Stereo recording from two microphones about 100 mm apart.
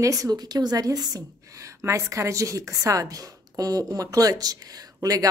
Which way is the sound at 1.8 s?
30° right (ahead or behind).